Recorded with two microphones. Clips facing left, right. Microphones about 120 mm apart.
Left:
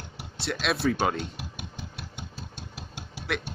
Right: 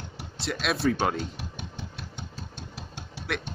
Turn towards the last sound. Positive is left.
turn(degrees=10)  # may be behind; listen again after turning